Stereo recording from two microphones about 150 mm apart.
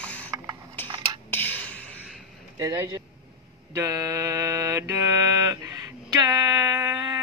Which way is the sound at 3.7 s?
20° right (ahead or behind).